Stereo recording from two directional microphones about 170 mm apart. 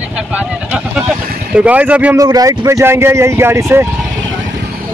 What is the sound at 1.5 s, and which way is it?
Speech, 10° right (ahead or behind).